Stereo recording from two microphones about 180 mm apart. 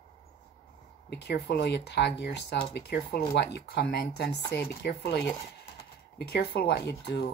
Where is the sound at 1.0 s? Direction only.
65° left (ahead or behind).